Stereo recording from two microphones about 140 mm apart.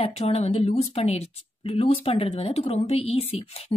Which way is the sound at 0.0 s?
50° left (ahead or behind).